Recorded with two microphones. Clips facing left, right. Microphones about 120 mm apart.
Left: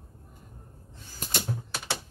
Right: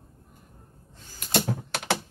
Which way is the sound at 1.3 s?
80° right.